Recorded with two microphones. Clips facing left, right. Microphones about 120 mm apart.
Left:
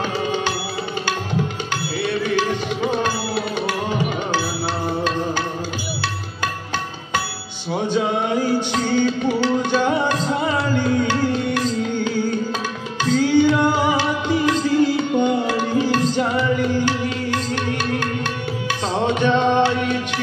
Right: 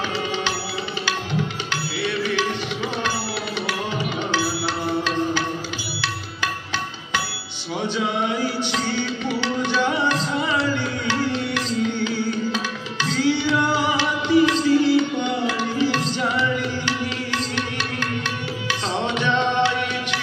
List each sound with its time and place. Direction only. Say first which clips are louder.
2.0 s music: left 3 dB; 45° left (ahead or behind)
8.7 s music: left 6 dB; 45° left (ahead or behind)
18.7 s music: left 4 dB; 50° left (ahead or behind)